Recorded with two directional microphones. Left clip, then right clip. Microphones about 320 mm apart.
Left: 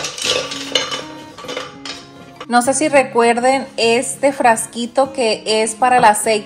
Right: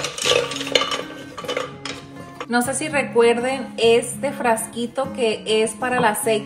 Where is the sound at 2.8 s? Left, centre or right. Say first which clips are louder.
Left 5 dB; centre.